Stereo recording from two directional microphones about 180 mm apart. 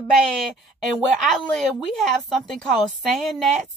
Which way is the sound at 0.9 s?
Centre (ahead or behind).